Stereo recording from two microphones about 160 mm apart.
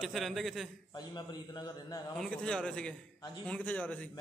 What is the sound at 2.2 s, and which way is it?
A man's voice, 5° left (ahead or behind).